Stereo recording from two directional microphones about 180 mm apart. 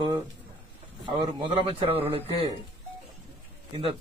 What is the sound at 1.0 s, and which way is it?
A man's voice, 25° right (ahead or behind).